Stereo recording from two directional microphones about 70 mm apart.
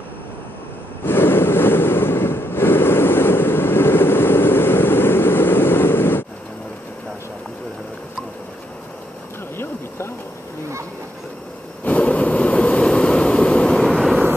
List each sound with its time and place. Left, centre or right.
1.0 s waves: left
9.6 s a sound: left
11.8 s vehicle: left
13.8 s vehicle: centre